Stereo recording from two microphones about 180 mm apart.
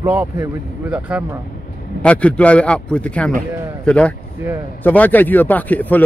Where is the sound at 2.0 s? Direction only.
5° left (ahead or behind).